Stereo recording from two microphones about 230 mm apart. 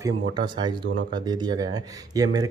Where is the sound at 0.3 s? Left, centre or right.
Centre.